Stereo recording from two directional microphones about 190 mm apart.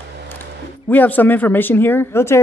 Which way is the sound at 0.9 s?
10° left (ahead or behind).